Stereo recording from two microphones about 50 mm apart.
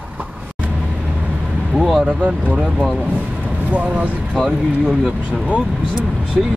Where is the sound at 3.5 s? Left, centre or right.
Right.